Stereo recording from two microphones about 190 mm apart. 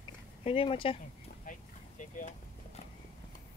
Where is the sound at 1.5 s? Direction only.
45° left (ahead or behind).